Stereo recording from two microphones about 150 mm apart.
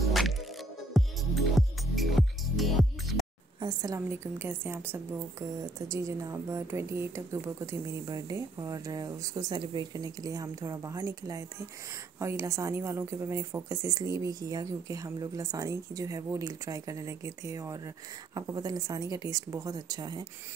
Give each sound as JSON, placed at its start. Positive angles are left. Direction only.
{"t": 0.1, "sound": "music", "side_deg": 0}
{"t": 3.6, "sound": "a woman's voice", "side_deg": -25}